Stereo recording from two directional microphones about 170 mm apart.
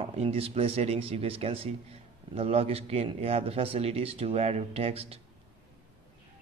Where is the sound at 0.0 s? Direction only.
35° right (ahead or behind).